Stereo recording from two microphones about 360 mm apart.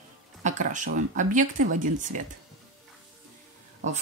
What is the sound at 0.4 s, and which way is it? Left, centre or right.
Speech, centre.